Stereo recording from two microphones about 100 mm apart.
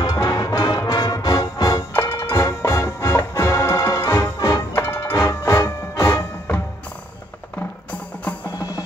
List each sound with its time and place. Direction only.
0.0 s music: 35° left (ahead or behind); by 8.4 s 15° left (ahead or behind)
8.5 s music: 40° left (ahead or behind)